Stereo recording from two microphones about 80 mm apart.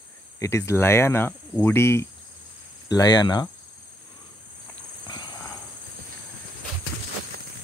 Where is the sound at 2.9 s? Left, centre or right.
Left.